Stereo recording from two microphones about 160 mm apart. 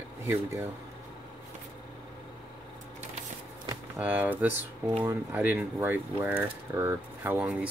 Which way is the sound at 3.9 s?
10° right (ahead or behind).